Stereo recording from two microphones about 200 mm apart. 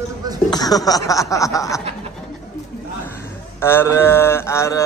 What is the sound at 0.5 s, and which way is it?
Speech, 20° left (ahead or behind).